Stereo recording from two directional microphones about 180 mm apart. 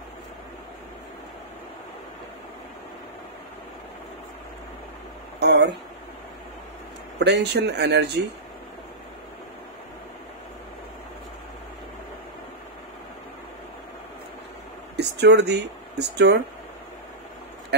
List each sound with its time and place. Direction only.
5.4 s speech: 70° right (ahead or behind)
7.2 s speech: 65° right (ahead or behind)
15.0 s speech: 70° right (ahead or behind)